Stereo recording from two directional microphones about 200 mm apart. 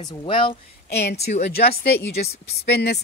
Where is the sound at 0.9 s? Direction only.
55° left (ahead or behind).